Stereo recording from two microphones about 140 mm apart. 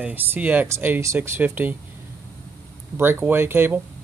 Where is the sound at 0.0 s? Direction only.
15° right (ahead or behind).